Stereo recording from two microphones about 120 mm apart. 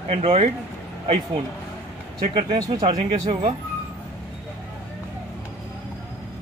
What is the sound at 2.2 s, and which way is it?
Speech, 55° right (ahead or behind).